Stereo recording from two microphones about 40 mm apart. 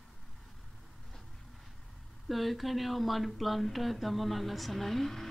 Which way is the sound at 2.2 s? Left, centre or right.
Centre.